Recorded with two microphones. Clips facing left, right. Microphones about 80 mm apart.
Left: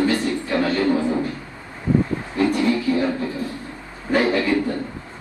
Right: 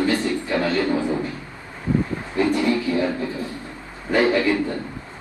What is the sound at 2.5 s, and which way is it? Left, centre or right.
Speech, right.